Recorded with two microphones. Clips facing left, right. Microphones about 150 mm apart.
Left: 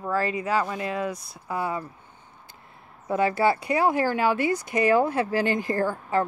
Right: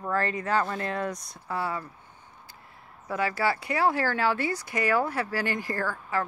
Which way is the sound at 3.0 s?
25° left (ahead or behind).